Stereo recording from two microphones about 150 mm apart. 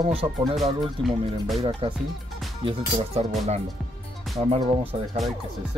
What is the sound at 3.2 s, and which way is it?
Speech, 50° right (ahead or behind).